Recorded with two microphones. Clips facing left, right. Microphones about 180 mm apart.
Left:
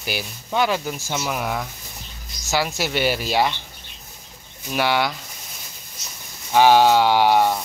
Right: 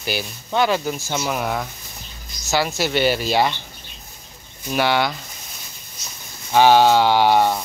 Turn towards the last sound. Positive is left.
turn(degrees=10)  # may be behind; listen again after turning